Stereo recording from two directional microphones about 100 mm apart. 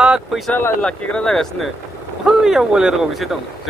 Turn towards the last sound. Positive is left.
turn(degrees=0)  # may be behind; listen again after turning